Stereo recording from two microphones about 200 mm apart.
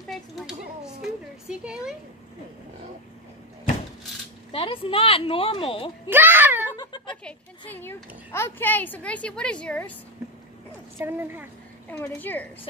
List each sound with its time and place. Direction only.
0.1 s a sound: centre (ahead or behind)
4.5 s speech: 25° left (ahead or behind)
6.0 s a child's voice: 10° right (ahead or behind)
6.8 s a sound: 25° left (ahead or behind)
7.2 s speech: 10° left (ahead or behind)
11.0 s a child's voice: 10° right (ahead or behind)
11.9 s speech: 10° left (ahead or behind)